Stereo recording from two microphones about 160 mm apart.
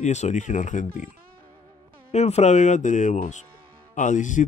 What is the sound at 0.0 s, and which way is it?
Speech, 45° left (ahead or behind).